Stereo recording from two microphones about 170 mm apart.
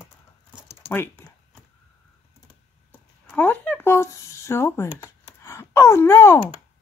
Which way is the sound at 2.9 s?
10° left (ahead or behind).